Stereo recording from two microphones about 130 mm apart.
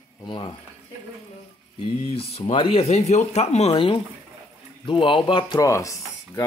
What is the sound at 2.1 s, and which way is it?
Speech, 45° left (ahead or behind).